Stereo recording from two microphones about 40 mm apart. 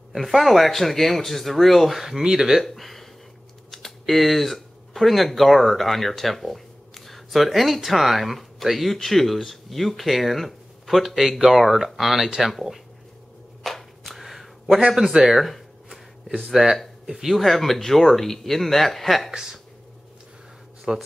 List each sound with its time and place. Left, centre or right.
0.1 s speech: centre
2.6 s speech: centre
13.7 s shuffling cards: centre
15.2 s a sound: centre
16.3 s speech: centre
17.4 s speech: centre
19.3 s speech: centre
20.9 s speech: centre